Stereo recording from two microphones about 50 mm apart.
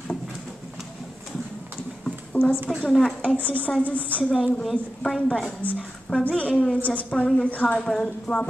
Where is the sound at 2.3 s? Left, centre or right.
Left.